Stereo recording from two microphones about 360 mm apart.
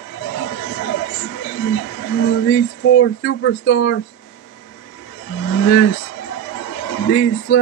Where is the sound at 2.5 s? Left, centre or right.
Left.